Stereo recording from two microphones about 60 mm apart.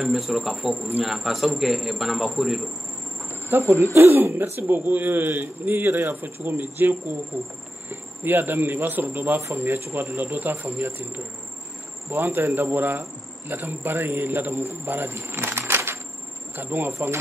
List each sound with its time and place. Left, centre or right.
0.0 s a man's voice: centre
3.4 s speech: right
7.9 s speech: right
13.8 s speech: right
14.9 s insect: right
16.5 s speech: right